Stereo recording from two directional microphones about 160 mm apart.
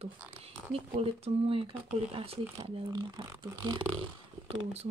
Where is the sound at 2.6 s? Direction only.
30° right (ahead or behind).